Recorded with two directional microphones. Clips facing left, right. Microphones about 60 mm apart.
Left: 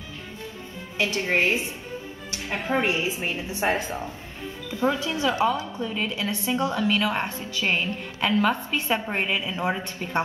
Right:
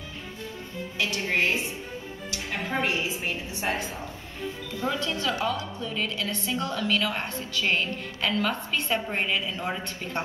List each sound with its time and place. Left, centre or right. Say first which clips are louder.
0.9 s a woman's voice: left 3 dB; left
2.7 s a woman's voice: left 4 dB; left
3.6 s speech: left 5 dB; centre
4.9 s a woman's voice: left 3 dB; centre